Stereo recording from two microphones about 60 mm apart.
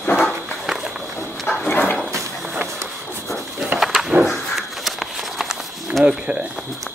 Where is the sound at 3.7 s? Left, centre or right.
Centre.